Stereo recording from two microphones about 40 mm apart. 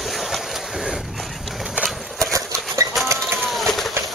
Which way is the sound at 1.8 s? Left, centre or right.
Right.